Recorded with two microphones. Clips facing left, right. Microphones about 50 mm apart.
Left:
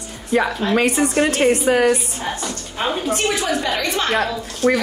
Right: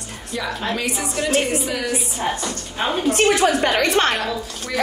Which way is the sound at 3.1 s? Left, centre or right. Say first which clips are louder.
Right 3 dB; right.